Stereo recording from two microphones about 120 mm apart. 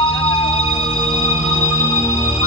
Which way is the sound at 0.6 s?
55° left (ahead or behind).